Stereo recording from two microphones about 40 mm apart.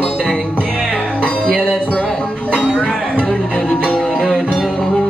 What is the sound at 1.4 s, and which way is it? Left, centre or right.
Music, left.